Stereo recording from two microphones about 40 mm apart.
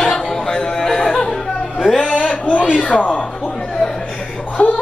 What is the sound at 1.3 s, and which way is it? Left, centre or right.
Music, centre.